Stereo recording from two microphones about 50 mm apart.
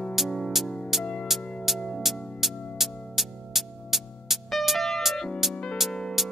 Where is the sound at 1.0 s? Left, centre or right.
Centre.